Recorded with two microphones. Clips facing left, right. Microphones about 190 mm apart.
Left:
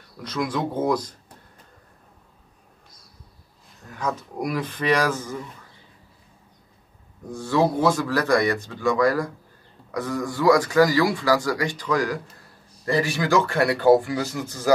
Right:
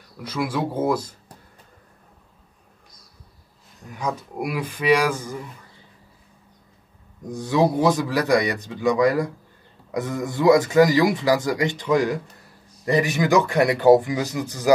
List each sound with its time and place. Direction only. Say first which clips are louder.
0.2 s speech: right 1 dB; 10° right (ahead or behind)
3.8 s speech: even; 15° right (ahead or behind)
7.2 s speech: right 1 dB; 15° right (ahead or behind)